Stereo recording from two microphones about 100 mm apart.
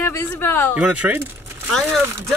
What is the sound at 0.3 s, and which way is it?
Speech, 20° left (ahead or behind).